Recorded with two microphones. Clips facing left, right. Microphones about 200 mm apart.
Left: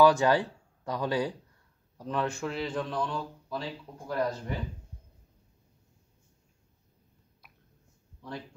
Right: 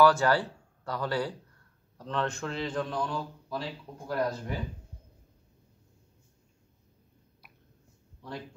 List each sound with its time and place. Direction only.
0.0 s a man's voice: 15° left (ahead or behind); by 4.6 s 5° right (ahead or behind)